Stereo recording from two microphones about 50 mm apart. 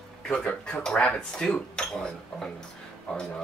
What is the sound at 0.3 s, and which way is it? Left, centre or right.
Speech, centre.